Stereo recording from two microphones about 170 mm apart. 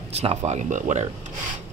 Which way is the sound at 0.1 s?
35° right (ahead or behind).